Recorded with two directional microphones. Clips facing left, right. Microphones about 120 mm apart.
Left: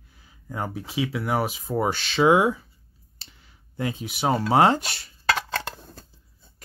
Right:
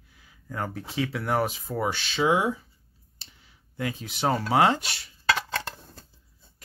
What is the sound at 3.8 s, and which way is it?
Speech, 20° left (ahead or behind).